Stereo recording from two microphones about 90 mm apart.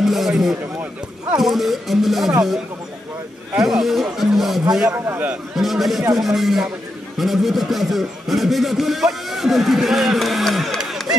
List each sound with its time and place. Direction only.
0.0 s speech: centre (ahead or behind)
3.5 s speech: 5° right (ahead or behind)
4.9 s a man's voice: 25° right (ahead or behind)
5.3 s speech: centre (ahead or behind)